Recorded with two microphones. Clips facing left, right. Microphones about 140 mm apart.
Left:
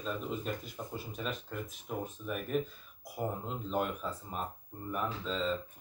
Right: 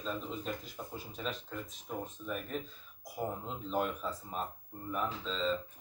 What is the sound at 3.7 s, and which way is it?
Speech, centre (ahead or behind).